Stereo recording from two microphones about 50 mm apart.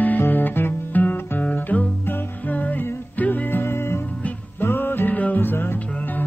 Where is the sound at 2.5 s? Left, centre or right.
Left.